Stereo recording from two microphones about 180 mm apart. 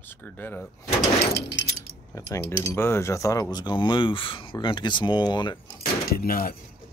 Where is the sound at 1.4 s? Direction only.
80° left.